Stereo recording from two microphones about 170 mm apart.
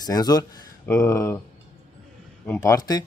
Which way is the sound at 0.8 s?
10° left (ahead or behind).